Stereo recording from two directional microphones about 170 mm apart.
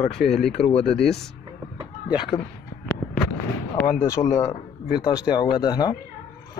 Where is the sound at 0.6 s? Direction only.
35° left (ahead or behind).